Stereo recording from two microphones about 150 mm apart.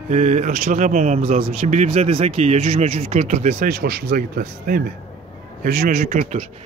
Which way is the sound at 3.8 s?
90° right.